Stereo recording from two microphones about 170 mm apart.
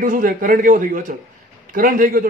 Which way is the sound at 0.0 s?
55° right (ahead or behind).